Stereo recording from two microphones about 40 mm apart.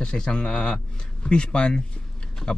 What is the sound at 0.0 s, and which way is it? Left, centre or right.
Speech, centre.